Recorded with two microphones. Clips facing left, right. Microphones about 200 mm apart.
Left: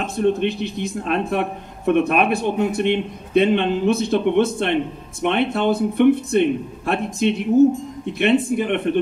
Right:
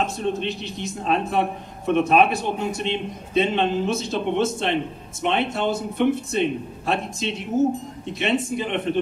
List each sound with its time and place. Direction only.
0.0 s a man's voice: 55° left (ahead or behind)